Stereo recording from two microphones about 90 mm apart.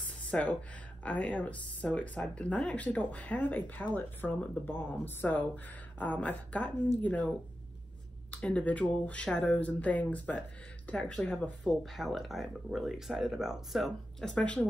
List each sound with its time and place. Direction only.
0.3 s a woman's voice: 15° left (ahead or behind)
11.8 s speech: centre (ahead or behind)
14.3 s speech: 10° left (ahead or behind)